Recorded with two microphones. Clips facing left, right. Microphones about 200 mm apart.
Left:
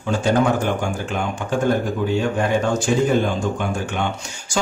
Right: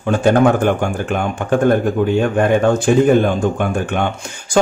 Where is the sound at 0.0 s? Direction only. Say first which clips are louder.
Right 6 dB; 55° right (ahead or behind).